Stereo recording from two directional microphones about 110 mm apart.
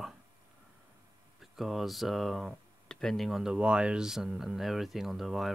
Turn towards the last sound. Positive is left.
turn(degrees=0)  # may be behind; listen again after turning